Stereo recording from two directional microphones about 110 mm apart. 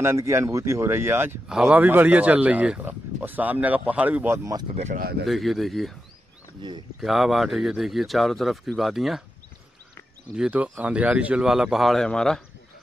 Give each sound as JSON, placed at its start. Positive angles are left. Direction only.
{"t": 0.0, "sound": "speech", "side_deg": -25}
{"t": 1.5, "sound": "speech", "side_deg": -5}
{"t": 1.8, "sound": "speech", "side_deg": -15}
{"t": 4.3, "sound": "speech", "side_deg": -30}
{"t": 5.2, "sound": "speech", "side_deg": 0}
{"t": 6.6, "sound": "speech", "side_deg": -40}
{"t": 7.0, "sound": "speech", "side_deg": 0}
{"t": 10.3, "sound": "speech", "side_deg": -10}